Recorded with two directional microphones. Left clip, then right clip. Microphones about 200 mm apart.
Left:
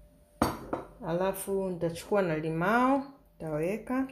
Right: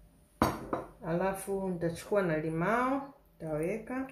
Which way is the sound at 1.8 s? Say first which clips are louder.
Left 1 dB; 35° left (ahead or behind).